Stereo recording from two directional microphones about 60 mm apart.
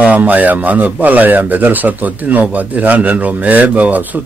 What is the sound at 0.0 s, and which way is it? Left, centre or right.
Speech, right.